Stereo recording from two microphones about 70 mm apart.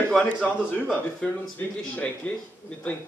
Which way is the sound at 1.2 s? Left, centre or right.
Centre.